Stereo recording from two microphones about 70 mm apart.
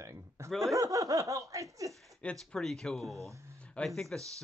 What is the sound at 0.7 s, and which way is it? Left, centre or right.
Snicker, right.